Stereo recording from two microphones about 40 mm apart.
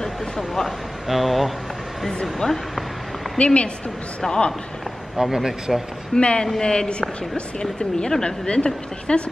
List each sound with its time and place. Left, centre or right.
0.0 s a sound: centre
1.0 s speech: centre
2.4 s speech: centre
3.3 s a woman's voice: left
5.1 s speech: centre
6.1 s a woman's voice: left